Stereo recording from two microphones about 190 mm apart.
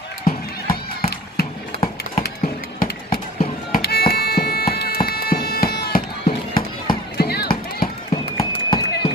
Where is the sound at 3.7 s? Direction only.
55° left (ahead or behind).